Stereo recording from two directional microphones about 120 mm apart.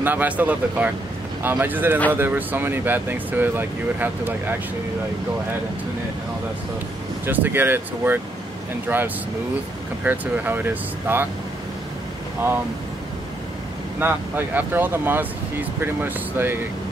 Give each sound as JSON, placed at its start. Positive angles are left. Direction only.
{"t": 0.0, "sound": "speech", "side_deg": -15}
{"t": 7.2, "sound": "speech", "side_deg": -15}
{"t": 13.9, "sound": "speech", "side_deg": -15}